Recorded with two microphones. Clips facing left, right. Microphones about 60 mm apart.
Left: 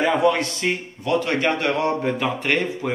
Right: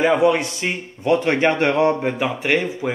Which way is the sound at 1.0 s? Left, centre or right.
Right.